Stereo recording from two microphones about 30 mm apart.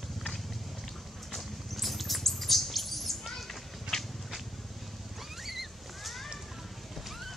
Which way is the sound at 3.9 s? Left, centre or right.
Left.